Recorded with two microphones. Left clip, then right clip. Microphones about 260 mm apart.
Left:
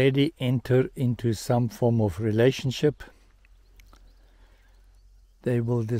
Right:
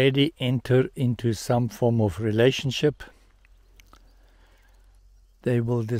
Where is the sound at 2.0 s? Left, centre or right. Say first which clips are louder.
Right 1 dB; centre.